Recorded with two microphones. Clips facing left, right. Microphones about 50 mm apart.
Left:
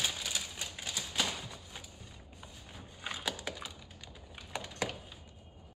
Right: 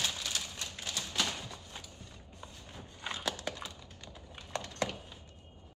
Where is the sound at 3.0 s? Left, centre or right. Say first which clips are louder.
Right 1 dB; centre.